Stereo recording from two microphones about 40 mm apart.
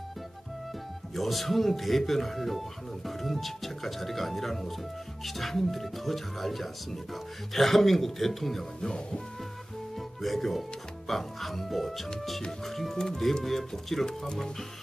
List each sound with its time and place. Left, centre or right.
1.1 s speech: centre
9.9 s music: centre
11.1 s speech: centre
14.0 s speech: centre